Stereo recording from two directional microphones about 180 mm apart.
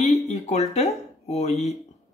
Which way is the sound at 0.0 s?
35° left (ahead or behind).